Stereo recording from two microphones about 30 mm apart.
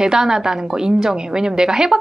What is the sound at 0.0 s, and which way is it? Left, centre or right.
A woman's voice, right.